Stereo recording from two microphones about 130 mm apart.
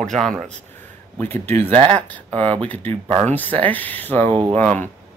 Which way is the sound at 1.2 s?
15° left (ahead or behind).